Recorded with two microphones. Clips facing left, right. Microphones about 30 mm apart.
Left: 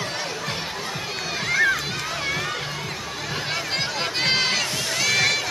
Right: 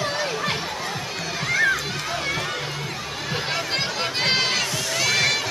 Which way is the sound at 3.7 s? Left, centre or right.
Centre.